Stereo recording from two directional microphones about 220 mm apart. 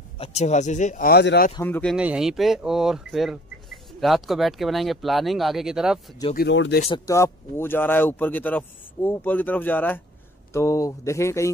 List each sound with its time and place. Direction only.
0.2 s speech: 30° left (ahead or behind); by 1.5 s 45° left (ahead or behind)
1.6 s speech: 5° left (ahead or behind)
2.0 s speech: 5° right (ahead or behind)
6.3 s speech: 50° left (ahead or behind)
7.1 s speech: 15° left (ahead or behind)